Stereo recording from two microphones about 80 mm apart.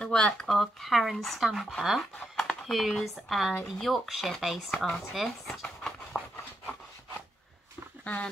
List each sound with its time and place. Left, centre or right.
0.0 s speech: centre
5.1 s a sound: centre
8.0 s speech: centre